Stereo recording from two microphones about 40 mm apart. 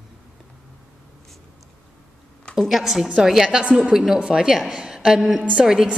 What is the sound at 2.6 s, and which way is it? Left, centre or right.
A woman's voice, centre.